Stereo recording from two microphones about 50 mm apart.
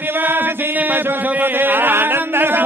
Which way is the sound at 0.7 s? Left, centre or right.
Right.